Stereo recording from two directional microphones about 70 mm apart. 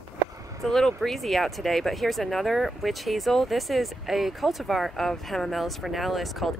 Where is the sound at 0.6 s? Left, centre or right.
Centre.